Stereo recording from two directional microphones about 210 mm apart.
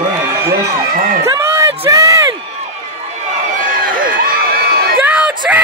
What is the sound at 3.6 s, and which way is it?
Crowd, 40° right (ahead or behind).